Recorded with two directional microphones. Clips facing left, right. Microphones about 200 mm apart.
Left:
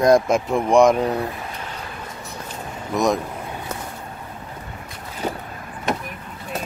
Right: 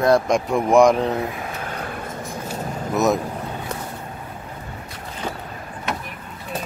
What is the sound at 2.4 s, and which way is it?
Vehicle, 5° right (ahead or behind).